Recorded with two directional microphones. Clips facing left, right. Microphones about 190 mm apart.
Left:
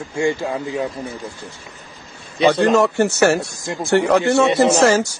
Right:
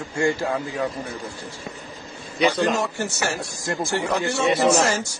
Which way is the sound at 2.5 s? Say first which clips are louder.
Left 8 dB; 65° left (ahead or behind).